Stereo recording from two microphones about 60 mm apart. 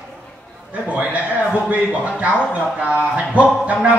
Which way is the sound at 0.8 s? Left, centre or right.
Right.